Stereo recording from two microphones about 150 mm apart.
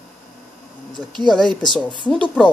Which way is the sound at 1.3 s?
5° left (ahead or behind).